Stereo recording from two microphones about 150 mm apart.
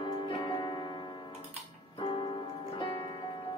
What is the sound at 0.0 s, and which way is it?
Music, 30° left (ahead or behind).